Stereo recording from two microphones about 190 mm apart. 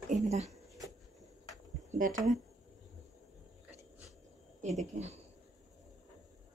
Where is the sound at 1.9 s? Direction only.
45° right (ahead or behind).